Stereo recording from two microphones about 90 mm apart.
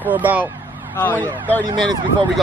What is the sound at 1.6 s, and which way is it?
Speech, 50° right (ahead or behind).